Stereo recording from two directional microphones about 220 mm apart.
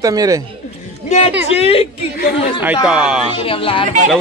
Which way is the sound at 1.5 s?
25° left (ahead or behind).